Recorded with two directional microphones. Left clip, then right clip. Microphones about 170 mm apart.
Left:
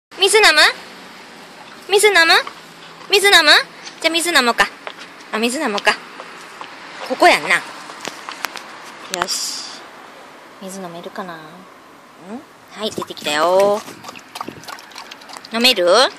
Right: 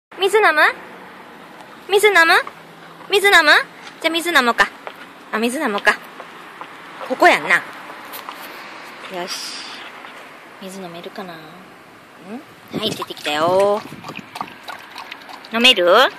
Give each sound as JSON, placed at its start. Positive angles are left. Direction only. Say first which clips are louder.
{"t": 0.2, "sound": "speech", "louder": "left 2 dB", "side_deg": 5}
{"t": 1.9, "sound": "speech", "louder": "left 1 dB", "side_deg": 0}
{"t": 7.1, "sound": "speech", "louder": "left 1 dB", "side_deg": 5}
{"t": 9.1, "sound": "speech", "louder": "left 5 dB", "side_deg": 15}
{"t": 12.7, "sound": "speech", "louder": "right 1 dB", "side_deg": 5}
{"t": 15.5, "sound": "speech", "louder": "right 1 dB", "side_deg": 5}